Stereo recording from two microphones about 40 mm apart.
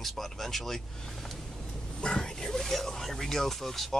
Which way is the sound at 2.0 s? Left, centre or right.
Centre.